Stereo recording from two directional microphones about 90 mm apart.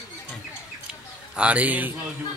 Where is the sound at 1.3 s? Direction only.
15° right (ahead or behind).